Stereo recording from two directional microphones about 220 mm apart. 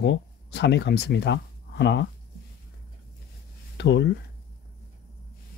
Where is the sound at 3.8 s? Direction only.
55° left (ahead or behind).